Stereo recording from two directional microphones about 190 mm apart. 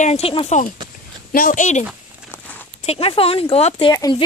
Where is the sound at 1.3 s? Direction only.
45° left (ahead or behind).